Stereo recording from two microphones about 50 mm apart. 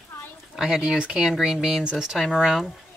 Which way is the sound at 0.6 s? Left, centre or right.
Centre.